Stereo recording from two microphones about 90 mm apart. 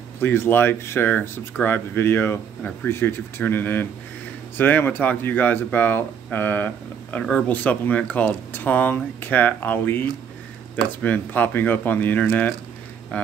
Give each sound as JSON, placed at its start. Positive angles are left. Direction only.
{"t": 0.2, "sound": "speech", "side_deg": 25}